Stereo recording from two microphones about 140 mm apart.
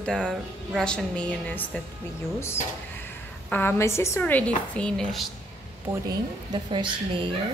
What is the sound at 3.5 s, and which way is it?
A woman's voice, 15° left (ahead or behind).